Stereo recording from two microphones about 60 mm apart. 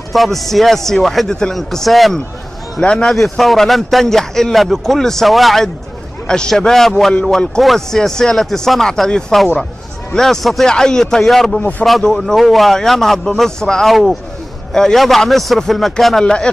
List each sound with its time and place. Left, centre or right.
0.1 s a man's voice: centre
2.8 s a man's voice: centre
3.1 s a man's voice: centre
6.2 s a man's voice: centre